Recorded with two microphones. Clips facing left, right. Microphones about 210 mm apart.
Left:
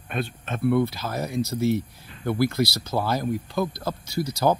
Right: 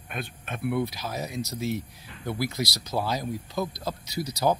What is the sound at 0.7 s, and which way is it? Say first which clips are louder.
Speech: left 5 dB; 55° left (ahead or behind).